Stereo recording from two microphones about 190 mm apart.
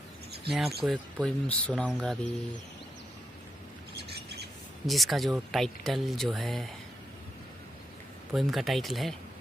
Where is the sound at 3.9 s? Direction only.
60° right (ahead or behind).